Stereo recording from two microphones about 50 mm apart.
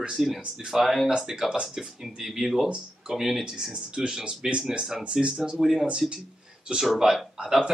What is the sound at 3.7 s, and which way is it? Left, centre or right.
Speech, centre.